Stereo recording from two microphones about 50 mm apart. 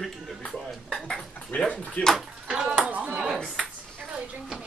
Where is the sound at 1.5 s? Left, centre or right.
Left.